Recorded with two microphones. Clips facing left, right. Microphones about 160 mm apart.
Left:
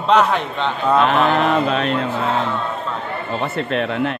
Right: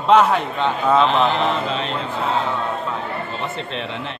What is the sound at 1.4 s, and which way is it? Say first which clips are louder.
Speech: left 4 dB; 55° left (ahead or behind).